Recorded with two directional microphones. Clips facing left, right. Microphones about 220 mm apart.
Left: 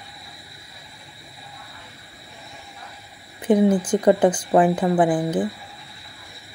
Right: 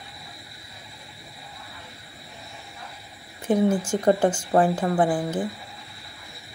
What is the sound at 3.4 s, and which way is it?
Speech, 20° left (ahead or behind).